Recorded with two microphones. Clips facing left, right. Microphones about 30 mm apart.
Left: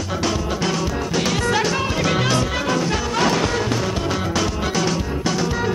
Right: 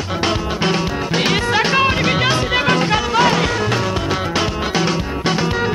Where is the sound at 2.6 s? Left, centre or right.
Right.